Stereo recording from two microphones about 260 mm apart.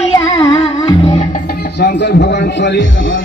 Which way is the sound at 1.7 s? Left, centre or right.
Left.